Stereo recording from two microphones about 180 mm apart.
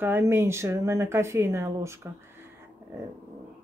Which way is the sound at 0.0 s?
10° right (ahead or behind).